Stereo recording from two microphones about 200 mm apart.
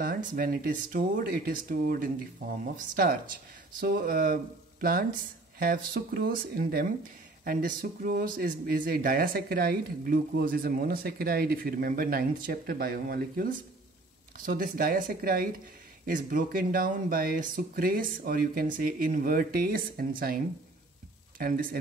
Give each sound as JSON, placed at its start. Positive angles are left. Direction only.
{"t": 0.0, "sound": "speech", "side_deg": -40}